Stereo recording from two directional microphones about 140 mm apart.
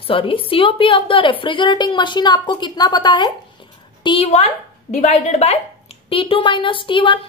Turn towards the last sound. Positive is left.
turn(degrees=35)  # may be behind; listen again after turning